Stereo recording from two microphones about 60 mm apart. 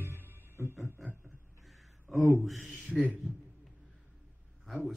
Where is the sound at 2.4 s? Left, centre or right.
Centre.